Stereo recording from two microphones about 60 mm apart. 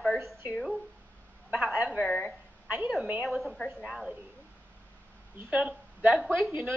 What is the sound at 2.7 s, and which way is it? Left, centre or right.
Speech, centre.